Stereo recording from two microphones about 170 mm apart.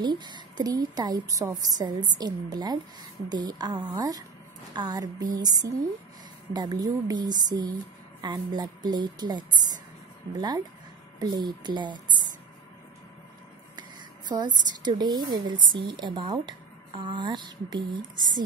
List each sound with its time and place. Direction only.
0.0 s speech: 25° right (ahead or behind)
13.7 s speech: 25° right (ahead or behind)